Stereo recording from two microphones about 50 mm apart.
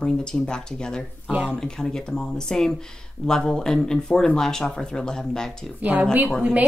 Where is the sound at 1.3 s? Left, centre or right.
Right.